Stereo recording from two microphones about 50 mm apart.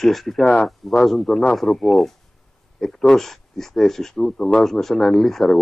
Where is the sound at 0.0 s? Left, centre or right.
Centre.